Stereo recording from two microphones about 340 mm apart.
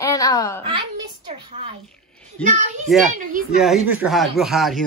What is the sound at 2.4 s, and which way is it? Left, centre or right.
Speech, right.